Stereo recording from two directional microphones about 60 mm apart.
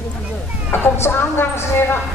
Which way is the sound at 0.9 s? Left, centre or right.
Left.